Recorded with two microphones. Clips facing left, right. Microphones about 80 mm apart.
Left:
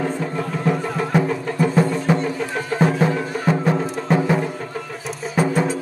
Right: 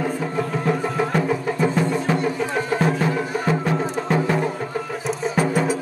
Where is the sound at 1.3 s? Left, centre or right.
Centre.